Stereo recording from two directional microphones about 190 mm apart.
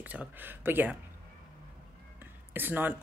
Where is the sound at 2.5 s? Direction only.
10° right (ahead or behind).